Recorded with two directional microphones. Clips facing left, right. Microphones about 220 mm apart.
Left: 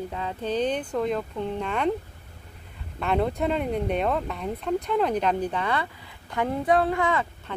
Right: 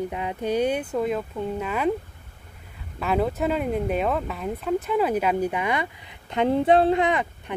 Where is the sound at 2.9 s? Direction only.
5° right (ahead or behind).